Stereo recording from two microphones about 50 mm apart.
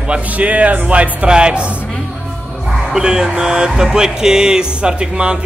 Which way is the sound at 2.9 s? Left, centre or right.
Centre.